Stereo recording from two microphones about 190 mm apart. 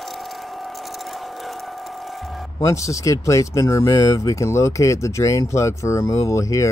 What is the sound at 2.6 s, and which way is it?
Speech, 15° left (ahead or behind).